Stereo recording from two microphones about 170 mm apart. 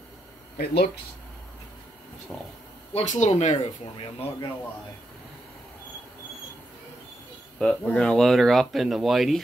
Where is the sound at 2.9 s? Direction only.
40° left (ahead or behind).